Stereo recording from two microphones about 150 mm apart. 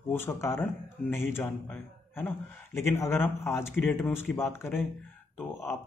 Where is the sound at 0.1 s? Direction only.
15° left (ahead or behind).